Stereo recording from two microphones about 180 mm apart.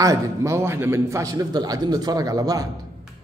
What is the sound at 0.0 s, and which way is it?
A man's voice, 15° right (ahead or behind).